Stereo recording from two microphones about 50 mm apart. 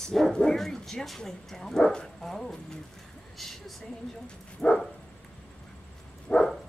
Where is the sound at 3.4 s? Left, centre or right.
Centre.